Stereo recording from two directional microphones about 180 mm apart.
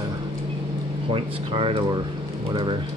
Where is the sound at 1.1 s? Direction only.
30° right (ahead or behind).